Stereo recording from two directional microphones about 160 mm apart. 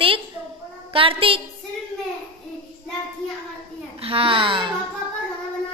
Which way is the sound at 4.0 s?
35° right (ahead or behind).